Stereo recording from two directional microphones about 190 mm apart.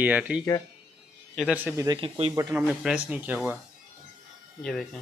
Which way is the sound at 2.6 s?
5° right (ahead or behind).